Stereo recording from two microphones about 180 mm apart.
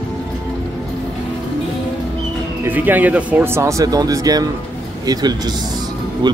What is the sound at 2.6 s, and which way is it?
Speech, 10° right (ahead or behind).